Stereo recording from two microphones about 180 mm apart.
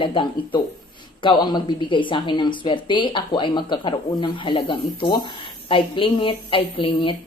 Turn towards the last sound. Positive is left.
turn(degrees=30)  # may be behind; listen again after turning